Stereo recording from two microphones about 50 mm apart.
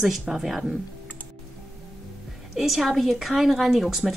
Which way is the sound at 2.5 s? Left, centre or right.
Centre.